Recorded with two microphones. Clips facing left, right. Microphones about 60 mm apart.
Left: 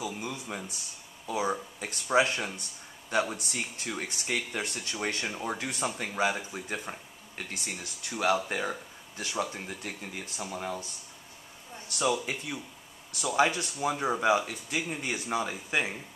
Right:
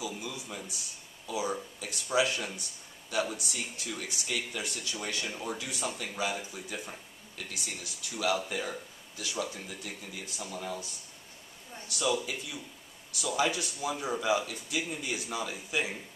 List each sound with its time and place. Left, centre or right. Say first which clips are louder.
0.0 s speech: left 2 dB; left
11.9 s speech: left 2 dB; left